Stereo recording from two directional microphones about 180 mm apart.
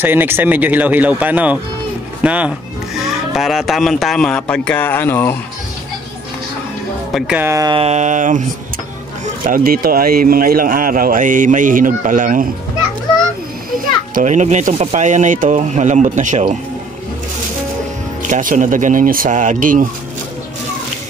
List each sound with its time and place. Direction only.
0.0 s speech: 10° right (ahead or behind); by 5.3 s 10° left (ahead or behind)
7.2 s speech: 5° right (ahead or behind)
7.7 s speech: 35° right (ahead or behind)
14.1 s speech: 40° right (ahead or behind)
18.2 s speech: 45° right (ahead or behind)